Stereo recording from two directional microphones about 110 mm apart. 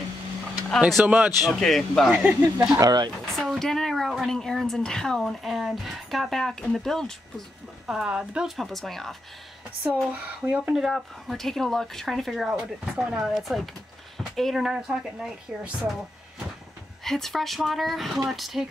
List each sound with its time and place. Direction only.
0.7 s speech: centre (ahead or behind)
1.0 s speech: 10° right (ahead or behind)
1.4 s speech: centre (ahead or behind)
2.0 s speech: 10° right (ahead or behind)
2.8 s speech: 40° right (ahead or behind)
3.3 s speech: 5° left (ahead or behind)
7.8 s speech: 5° right (ahead or behind)
10.1 s speech: 15° right (ahead or behind)
17.0 s speech: 5° left (ahead or behind)